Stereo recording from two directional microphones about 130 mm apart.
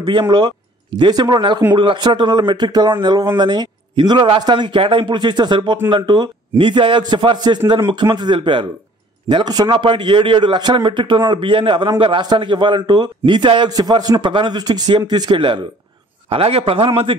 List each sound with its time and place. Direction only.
0.0 s speech: 35° right (ahead or behind)
16.3 s a man's voice: 50° right (ahead or behind)